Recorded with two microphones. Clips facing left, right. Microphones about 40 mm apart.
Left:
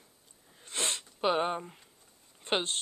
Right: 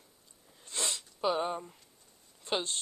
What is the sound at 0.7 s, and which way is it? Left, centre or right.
Sneeze, left.